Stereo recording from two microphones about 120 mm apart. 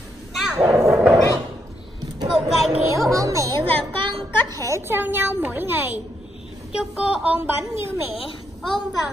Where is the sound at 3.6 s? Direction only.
50° right (ahead or behind).